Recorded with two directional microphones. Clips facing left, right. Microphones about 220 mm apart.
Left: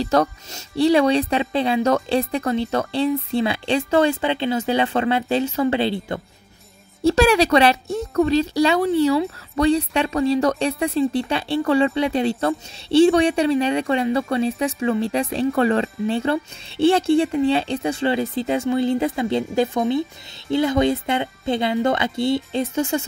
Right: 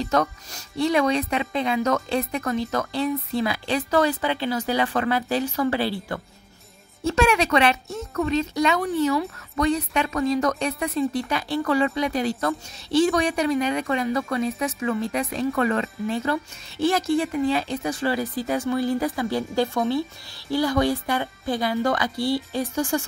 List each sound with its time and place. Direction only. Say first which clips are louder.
0.0 s speech: left 4 dB; 35° left (ahead or behind)
7.0 s speech: left 5 dB; 35° left (ahead or behind)